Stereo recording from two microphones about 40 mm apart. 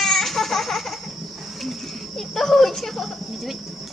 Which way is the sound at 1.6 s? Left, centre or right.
Centre.